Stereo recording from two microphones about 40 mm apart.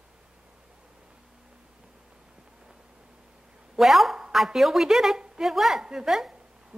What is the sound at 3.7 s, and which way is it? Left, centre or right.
Speech, centre.